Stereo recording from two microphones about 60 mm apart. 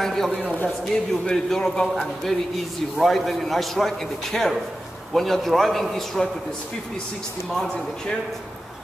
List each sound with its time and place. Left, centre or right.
0.0 s a man's voice: centre
0.3 s a man's voice: centre
0.8 s a man's voice: centre